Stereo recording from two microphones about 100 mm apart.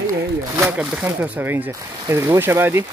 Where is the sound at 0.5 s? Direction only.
10° right (ahead or behind).